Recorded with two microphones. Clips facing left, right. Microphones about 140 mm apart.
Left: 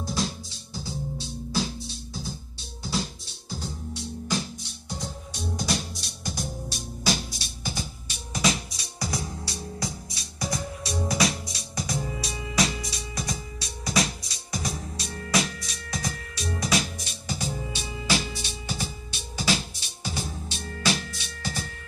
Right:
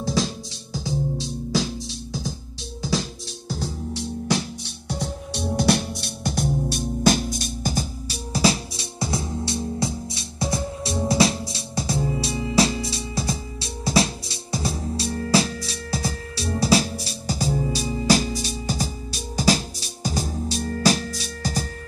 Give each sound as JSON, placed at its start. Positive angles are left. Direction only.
{"t": 0.0, "sound": "music", "side_deg": -90}